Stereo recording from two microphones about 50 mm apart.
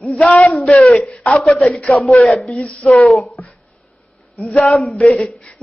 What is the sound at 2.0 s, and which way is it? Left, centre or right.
A man's voice, centre.